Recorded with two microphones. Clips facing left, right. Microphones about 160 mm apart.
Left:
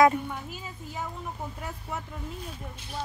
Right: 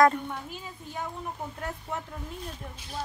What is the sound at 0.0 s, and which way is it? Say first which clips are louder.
Speech: left 1 dB; 5° left (ahead or behind).